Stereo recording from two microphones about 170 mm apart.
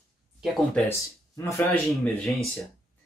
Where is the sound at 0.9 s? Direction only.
15° left (ahead or behind).